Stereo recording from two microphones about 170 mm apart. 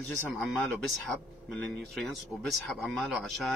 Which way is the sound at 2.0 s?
5° left (ahead or behind).